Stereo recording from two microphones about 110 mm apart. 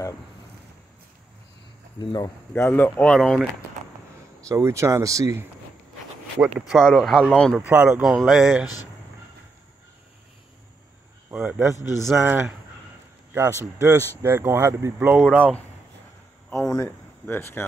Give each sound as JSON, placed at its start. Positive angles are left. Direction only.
{"t": 2.0, "sound": "a man's voice", "side_deg": 40}
{"t": 2.5, "sound": "speech", "side_deg": 15}
{"t": 3.2, "sound": "speech", "side_deg": 0}
{"t": 4.5, "sound": "speech", "side_deg": -30}
{"t": 6.7, "sound": "speech", "side_deg": 0}
{"t": 7.6, "sound": "speech", "side_deg": -10}
{"t": 11.3, "sound": "speech", "side_deg": -15}
{"t": 11.7, "sound": "a man's voice", "side_deg": 35}
{"t": 12.2, "sound": "speech", "side_deg": -20}
{"t": 14.2, "sound": "speech", "side_deg": -25}
{"t": 16.5, "sound": "a man's voice", "side_deg": 30}